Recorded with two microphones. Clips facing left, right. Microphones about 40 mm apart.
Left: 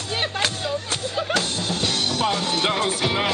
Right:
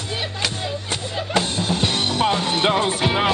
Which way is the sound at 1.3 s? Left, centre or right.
Right.